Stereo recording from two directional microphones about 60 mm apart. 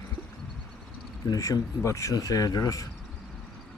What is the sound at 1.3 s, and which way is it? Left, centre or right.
Speech, left.